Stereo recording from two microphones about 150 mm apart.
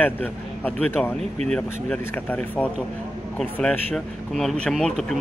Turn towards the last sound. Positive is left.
turn(degrees=5)  # may be behind; listen again after turning